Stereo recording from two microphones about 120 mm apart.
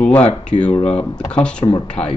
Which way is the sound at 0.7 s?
65° left (ahead or behind).